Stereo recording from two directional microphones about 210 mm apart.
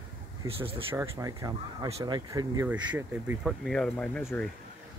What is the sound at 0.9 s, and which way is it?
Speech, 15° right (ahead or behind).